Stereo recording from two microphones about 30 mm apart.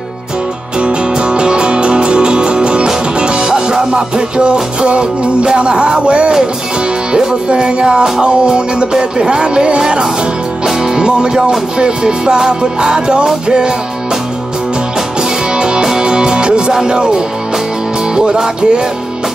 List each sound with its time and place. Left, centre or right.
0.7 s music: right
7.1 s music: right
15.5 s music: right
16.8 s speech: right
18.1 s music: right